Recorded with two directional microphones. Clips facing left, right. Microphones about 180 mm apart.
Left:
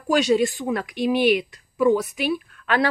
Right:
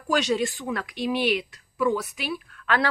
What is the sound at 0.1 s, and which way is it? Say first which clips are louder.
A woman's voice: left 5 dB; 15° left (ahead or behind).